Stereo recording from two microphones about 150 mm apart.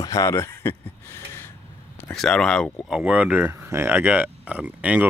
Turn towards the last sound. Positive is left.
turn(degrees=-10)  # may be behind; listen again after turning